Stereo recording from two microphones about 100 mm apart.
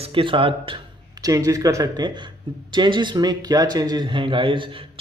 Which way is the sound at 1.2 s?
35° right (ahead or behind).